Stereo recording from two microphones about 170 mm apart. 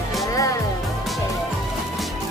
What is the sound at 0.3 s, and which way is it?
Music, 20° left (ahead or behind).